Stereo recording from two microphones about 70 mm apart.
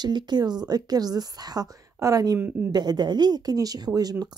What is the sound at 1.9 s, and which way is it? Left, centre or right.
Speech, right.